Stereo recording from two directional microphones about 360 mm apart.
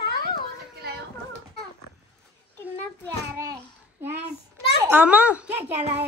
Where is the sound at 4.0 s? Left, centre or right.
Centre.